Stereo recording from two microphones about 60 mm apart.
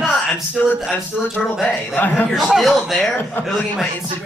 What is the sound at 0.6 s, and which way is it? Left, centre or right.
Speech, left.